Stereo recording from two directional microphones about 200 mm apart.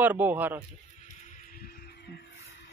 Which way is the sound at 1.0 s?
35° left (ahead or behind).